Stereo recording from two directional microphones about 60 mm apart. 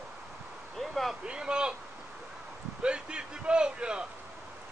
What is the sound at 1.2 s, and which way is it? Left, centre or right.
Speech, centre.